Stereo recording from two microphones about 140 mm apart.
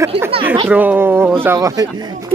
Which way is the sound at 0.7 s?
10° right (ahead or behind).